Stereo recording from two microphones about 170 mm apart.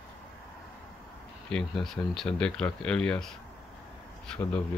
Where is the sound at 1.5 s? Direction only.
5° left (ahead or behind).